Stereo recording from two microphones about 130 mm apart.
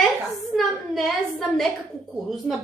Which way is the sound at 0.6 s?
Centre (ahead or behind).